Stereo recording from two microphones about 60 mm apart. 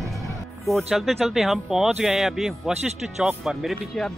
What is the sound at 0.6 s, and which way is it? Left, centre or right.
Speech, centre.